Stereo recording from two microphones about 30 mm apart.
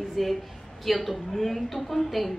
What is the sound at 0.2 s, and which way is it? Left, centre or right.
A woman's voice, centre.